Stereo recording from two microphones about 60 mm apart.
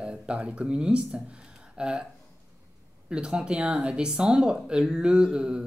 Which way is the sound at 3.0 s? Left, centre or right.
Centre.